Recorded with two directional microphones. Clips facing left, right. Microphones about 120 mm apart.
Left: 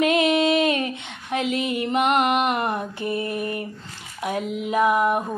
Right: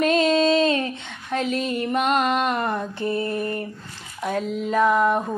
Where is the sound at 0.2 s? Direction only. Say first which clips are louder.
Right 1 dB; 15° left (ahead or behind).